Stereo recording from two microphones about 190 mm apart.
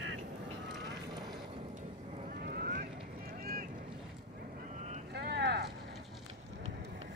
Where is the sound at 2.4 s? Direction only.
55° right (ahead or behind).